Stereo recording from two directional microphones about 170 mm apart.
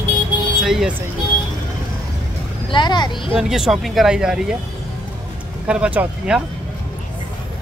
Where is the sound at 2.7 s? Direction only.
25° left (ahead or behind).